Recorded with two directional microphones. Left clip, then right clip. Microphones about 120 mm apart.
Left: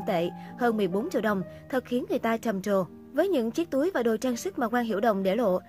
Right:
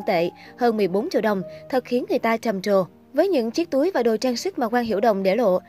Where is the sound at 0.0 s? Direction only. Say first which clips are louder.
Right 6 dB; 25° right (ahead or behind).